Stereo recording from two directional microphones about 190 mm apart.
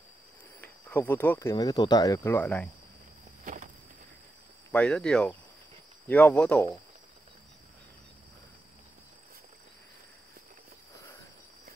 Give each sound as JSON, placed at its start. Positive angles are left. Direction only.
{"t": 0.6, "sound": "speech", "side_deg": 10}
{"t": 3.4, "sound": "a sound", "side_deg": -45}
{"t": 4.7, "sound": "speech", "side_deg": 5}